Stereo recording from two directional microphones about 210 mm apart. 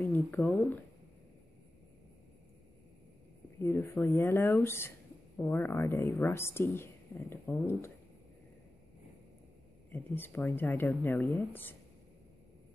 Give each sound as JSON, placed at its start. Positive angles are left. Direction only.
{"t": 0.0, "sound": "a woman's voice", "side_deg": 10}
{"t": 3.5, "sound": "a woman's voice", "side_deg": 15}
{"t": 9.8, "sound": "a woman's voice", "side_deg": 10}